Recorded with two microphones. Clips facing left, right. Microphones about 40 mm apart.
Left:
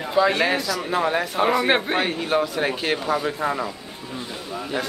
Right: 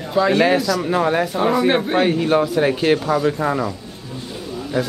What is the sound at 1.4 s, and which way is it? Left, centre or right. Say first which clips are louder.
Speech: even; centre.